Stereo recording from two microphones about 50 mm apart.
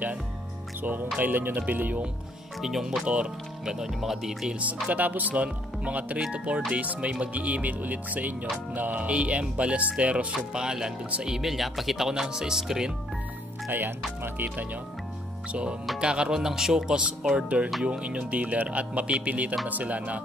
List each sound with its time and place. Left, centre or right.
1.2 s speech: right
2.6 s speech: centre
4.5 s speech: right; by 12.1 s centre
12.1 s speech: centre
13.7 s speech: right
16.0 s speech: centre